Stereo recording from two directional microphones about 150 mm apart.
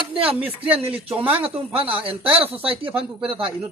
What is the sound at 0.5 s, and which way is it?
Speech, 40° right (ahead or behind).